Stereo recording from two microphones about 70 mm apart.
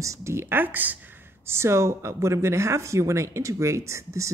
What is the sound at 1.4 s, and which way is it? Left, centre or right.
Speech, right.